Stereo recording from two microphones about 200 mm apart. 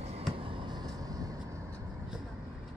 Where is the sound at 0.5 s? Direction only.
25° right (ahead or behind).